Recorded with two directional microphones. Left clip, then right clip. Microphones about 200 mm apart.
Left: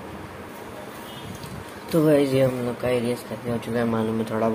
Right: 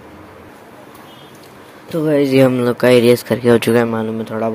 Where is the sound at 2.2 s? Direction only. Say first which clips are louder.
Right 9 dB; 35° right (ahead or behind).